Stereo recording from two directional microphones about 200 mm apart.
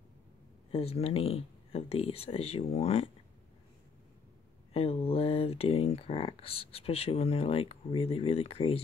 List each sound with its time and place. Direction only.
0.7 s speech: 30° left (ahead or behind)
4.7 s speech: 30° left (ahead or behind)